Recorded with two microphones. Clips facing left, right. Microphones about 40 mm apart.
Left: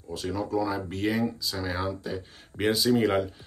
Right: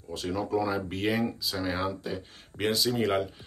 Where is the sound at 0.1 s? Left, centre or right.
Centre.